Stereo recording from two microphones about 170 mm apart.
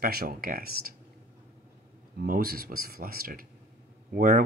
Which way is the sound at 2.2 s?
60° right (ahead or behind).